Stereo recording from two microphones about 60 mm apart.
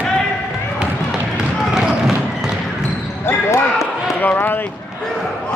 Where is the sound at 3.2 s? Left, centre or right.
Left.